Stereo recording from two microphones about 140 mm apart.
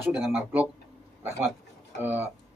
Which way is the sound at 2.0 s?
15° right (ahead or behind).